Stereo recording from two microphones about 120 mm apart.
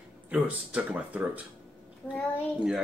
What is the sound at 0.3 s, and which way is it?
Speech, 10° right (ahead or behind).